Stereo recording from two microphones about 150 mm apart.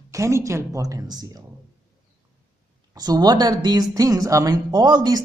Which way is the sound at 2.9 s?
25° right (ahead or behind).